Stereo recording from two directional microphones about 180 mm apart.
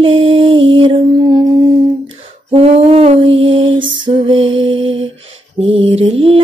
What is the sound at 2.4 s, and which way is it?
Lullaby, 35° right (ahead or behind).